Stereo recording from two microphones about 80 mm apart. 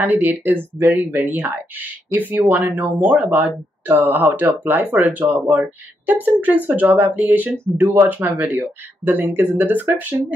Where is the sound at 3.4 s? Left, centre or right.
Right.